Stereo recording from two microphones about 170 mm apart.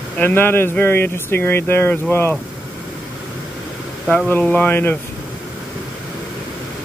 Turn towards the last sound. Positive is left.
turn(degrees=10)  # may be behind; listen again after turning